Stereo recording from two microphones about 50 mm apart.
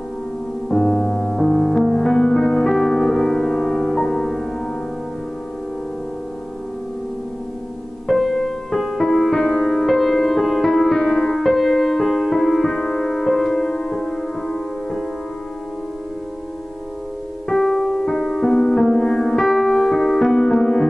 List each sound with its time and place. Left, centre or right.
0.7 s music: centre
8.1 s music: centre
17.5 s music: centre